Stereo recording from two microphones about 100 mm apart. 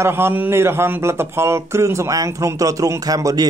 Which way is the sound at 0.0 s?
25° right (ahead or behind).